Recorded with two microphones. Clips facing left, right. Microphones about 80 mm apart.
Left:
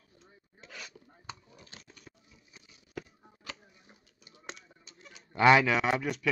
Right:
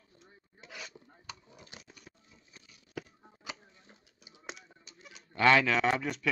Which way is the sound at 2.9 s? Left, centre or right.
Centre.